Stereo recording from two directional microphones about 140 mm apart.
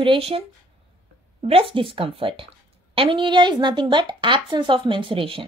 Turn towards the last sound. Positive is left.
turn(degrees=-40)  # may be behind; listen again after turning